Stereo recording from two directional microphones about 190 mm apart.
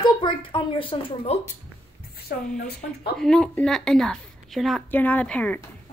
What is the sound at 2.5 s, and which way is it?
Speech, 50° left (ahead or behind).